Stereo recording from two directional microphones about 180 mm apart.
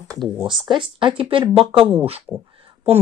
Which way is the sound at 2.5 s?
30° right (ahead or behind).